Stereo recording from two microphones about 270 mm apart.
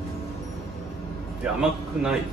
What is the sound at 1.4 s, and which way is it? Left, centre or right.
Speech, centre.